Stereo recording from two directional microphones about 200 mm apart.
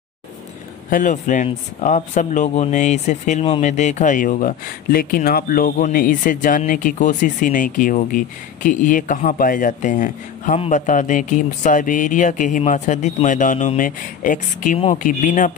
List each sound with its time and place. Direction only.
0.8 s speech: 40° left (ahead or behind)